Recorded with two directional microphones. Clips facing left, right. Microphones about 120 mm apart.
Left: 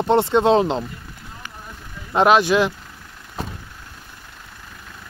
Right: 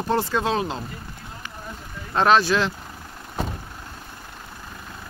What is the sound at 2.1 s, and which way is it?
Speech, 15° left (ahead or behind).